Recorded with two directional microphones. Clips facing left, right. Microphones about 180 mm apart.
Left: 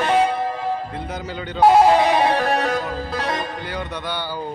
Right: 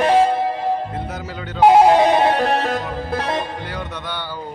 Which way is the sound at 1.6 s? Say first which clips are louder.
Right 2 dB; 25° right (ahead or behind).